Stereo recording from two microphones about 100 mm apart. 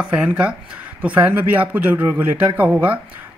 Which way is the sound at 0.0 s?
10° right (ahead or behind).